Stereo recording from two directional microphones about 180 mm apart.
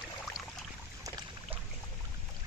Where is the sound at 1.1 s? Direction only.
20° right (ahead or behind).